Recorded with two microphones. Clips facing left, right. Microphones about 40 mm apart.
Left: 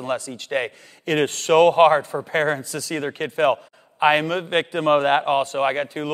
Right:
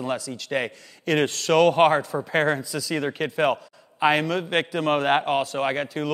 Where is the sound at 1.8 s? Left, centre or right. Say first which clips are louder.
Left 3 dB; centre.